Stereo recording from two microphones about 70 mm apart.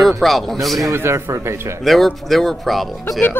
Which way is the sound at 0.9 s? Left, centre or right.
Right.